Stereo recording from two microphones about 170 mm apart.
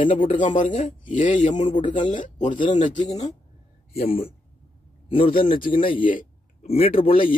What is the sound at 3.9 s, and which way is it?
Speech, 35° left (ahead or behind).